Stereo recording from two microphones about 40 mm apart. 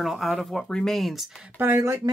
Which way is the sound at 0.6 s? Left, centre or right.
Centre.